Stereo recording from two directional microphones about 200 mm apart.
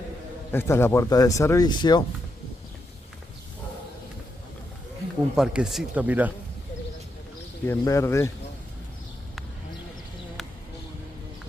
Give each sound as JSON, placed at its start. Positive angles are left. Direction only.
{"t": 0.5, "sound": "speech", "side_deg": 10}
{"t": 5.3, "sound": "speech", "side_deg": -5}
{"t": 7.6, "sound": "speech", "side_deg": 15}